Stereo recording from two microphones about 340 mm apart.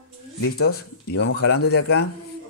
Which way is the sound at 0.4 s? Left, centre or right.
Left.